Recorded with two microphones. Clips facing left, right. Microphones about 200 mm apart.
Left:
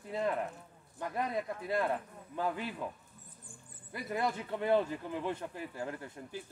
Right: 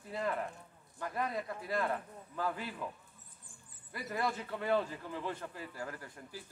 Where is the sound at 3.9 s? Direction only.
20° left (ahead or behind).